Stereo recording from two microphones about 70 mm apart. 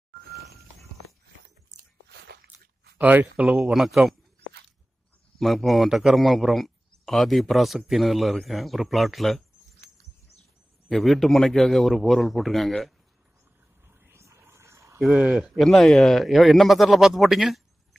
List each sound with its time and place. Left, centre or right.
3.0 s speech: right
3.7 s a man's voice: centre
5.4 s a man's voice: centre
10.9 s a man's voice: centre
13.8 s a sound: right
15.0 s speech: centre
15.5 s a man's voice: centre